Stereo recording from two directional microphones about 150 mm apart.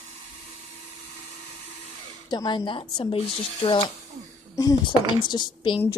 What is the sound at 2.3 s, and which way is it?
Speech, 30° left (ahead or behind).